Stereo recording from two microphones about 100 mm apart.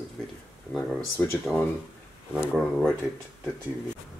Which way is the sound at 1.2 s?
20° left (ahead or behind).